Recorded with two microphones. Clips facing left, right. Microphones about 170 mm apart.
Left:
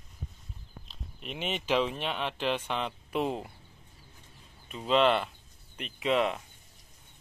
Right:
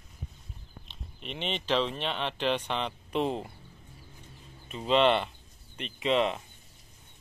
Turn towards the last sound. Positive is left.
turn(degrees=0)  # may be behind; listen again after turning